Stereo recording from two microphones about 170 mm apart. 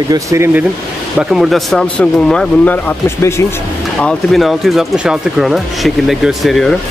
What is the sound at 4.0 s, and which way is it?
Speech, 5° left (ahead or behind).